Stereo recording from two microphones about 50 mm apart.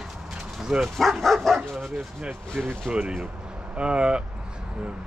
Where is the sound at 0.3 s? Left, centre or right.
Centre.